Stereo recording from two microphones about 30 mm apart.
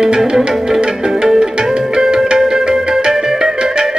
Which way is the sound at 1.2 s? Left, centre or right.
Centre.